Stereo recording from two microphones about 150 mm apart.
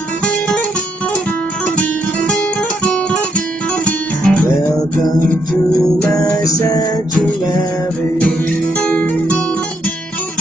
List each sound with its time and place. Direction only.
2.8 s music: 10° left (ahead or behind)
6.1 s music: 20° left (ahead or behind)
8.2 s music: 10° left (ahead or behind)